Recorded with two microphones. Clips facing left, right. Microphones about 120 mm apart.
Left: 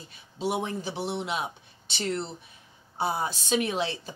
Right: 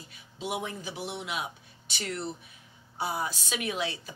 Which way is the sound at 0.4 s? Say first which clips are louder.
Left 5 dB; 30° left (ahead or behind).